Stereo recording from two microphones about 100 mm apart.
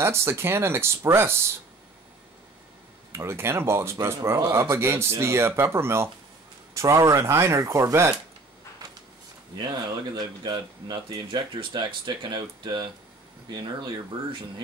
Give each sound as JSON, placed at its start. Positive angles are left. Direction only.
{"t": 0.0, "sound": "speech", "side_deg": -25}
{"t": 3.1, "sound": "speech", "side_deg": -25}
{"t": 9.6, "sound": "speech", "side_deg": -45}